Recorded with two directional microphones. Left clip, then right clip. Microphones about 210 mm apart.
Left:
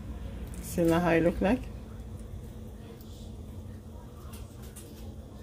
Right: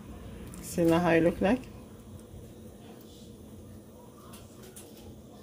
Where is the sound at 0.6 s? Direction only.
Centre (ahead or behind).